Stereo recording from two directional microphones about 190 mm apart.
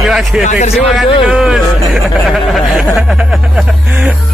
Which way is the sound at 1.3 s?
Centre (ahead or behind).